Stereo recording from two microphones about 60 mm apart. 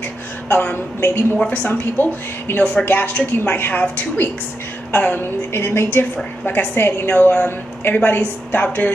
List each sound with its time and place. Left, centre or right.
0.5 s a woman's voice: left